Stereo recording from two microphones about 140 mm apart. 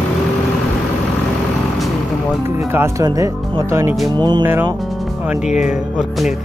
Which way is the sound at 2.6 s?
20° right (ahead or behind).